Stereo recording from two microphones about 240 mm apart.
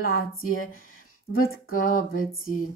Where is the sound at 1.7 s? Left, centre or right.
Left.